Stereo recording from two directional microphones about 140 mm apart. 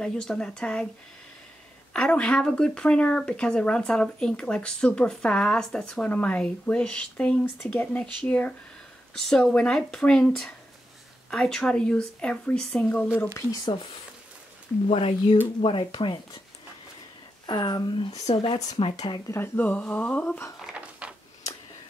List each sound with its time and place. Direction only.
0.0 s speech: 5° left (ahead or behind)
2.0 s speech: 5° left (ahead or behind)
13.2 s speech: 20° left (ahead or behind)
14.9 s a woman's voice: 40° left (ahead or behind)
17.5 s a woman's voice: 30° left (ahead or behind)
19.3 s speech: 15° left (ahead or behind)
20.5 s a sound: 5° right (ahead or behind)